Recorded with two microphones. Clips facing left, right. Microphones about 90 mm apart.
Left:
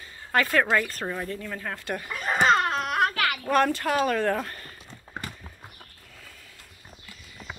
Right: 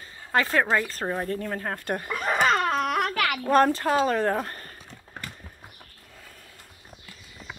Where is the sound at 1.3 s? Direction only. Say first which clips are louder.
Right 4 dB; 40° right (ahead or behind).